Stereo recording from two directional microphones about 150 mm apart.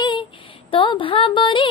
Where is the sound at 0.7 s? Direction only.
35° left (ahead or behind).